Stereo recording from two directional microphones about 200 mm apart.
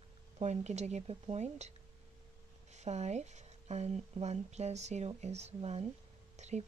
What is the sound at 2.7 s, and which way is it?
Speech, 35° right (ahead or behind).